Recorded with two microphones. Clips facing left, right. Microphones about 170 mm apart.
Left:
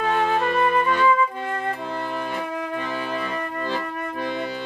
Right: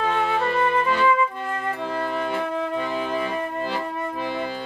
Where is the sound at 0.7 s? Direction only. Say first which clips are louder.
Left 1 dB; 25° right (ahead or behind).